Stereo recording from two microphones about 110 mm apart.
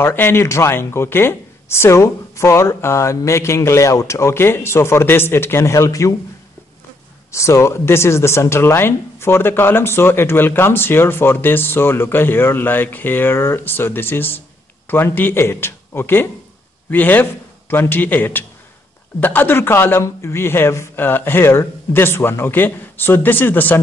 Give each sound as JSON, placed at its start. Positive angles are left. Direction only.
{"t": 0.0, "sound": "speech", "side_deg": 20}
{"t": 7.2, "sound": "speech", "side_deg": 25}